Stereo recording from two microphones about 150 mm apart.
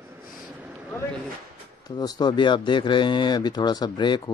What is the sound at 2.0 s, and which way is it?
Speech, 25° left (ahead or behind).